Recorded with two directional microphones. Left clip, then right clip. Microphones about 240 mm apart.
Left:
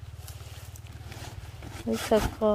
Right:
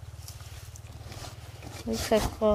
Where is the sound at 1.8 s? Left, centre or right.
Centre.